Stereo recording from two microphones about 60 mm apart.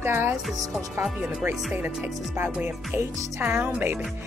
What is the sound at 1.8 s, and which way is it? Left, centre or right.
Speech, right.